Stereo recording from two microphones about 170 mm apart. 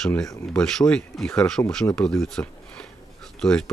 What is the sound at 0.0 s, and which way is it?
Speech, 5° left (ahead or behind).